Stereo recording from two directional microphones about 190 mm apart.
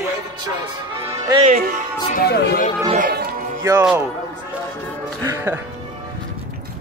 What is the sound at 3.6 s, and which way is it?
Speech, 15° right (ahead or behind).